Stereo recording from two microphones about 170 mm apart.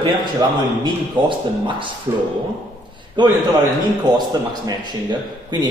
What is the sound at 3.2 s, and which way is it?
A man's voice, 25° right (ahead or behind).